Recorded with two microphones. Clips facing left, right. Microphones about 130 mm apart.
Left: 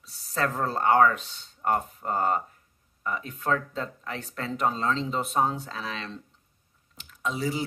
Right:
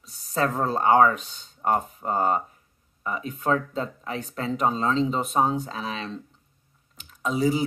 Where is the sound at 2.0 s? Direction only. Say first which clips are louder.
Right 2 dB; 10° right (ahead or behind).